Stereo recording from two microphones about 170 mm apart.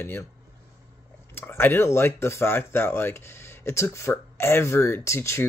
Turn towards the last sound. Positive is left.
turn(degrees=15)  # may be behind; listen again after turning